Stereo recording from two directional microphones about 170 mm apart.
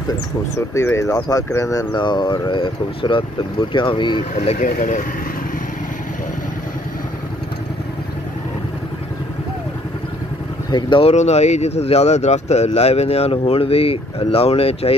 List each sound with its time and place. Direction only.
0.6 s speech: 15° left (ahead or behind)
4.6 s speech: 55° left (ahead or behind)
10.7 s speech: 30° left (ahead or behind)